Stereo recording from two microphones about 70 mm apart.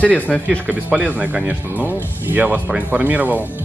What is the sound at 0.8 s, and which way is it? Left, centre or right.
Speech, right.